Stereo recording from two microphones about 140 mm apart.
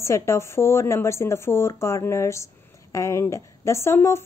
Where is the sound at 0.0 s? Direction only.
20° left (ahead or behind).